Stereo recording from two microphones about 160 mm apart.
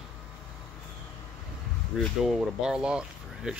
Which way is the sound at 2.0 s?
5° right (ahead or behind).